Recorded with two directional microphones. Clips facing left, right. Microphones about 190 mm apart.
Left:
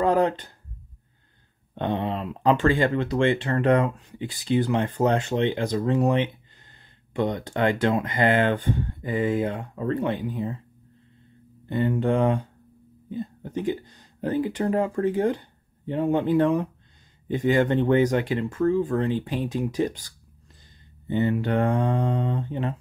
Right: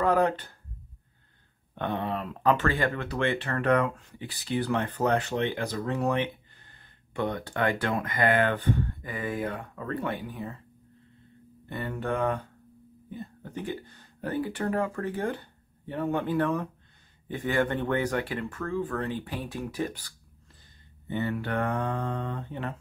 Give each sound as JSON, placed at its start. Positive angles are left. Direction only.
{"t": 0.0, "sound": "speech", "side_deg": 20}
{"t": 1.8, "sound": "speech", "side_deg": 20}
{"t": 11.7, "sound": "speech", "side_deg": 20}
{"t": 21.1, "sound": "speech", "side_deg": 20}